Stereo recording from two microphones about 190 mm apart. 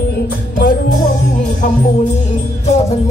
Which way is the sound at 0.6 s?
50° left (ahead or behind).